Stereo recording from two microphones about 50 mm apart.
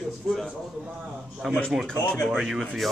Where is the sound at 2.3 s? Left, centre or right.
Centre.